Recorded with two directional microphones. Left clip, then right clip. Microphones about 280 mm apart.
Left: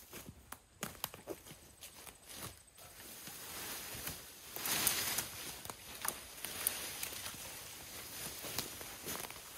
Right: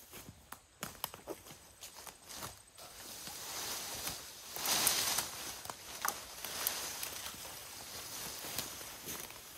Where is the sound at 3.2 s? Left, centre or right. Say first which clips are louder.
Right 5 dB; right; by 7.4 s centre.